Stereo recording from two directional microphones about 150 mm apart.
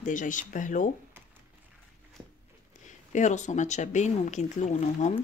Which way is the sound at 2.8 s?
55° left (ahead or behind).